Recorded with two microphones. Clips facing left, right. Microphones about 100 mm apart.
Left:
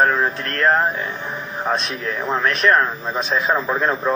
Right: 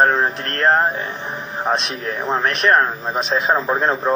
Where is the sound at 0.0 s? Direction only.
25° right (ahead or behind).